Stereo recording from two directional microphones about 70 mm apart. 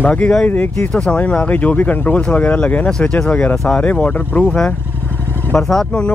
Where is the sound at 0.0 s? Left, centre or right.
Centre.